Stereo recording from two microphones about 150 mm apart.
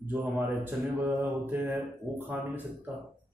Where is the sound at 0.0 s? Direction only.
10° right (ahead or behind).